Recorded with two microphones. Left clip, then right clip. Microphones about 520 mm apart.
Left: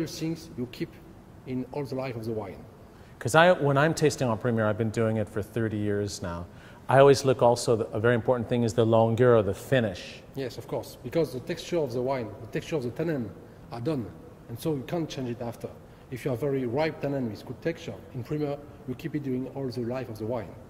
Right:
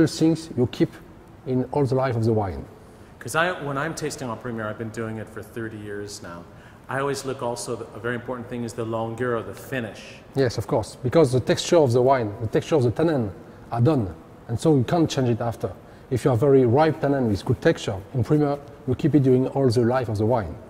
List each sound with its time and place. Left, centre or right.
0.0 s speech: right
3.2 s speech: left
10.3 s a man's voice: right